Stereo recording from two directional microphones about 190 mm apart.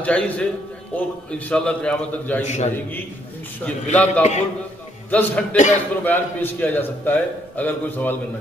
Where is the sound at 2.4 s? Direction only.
35° left (ahead or behind).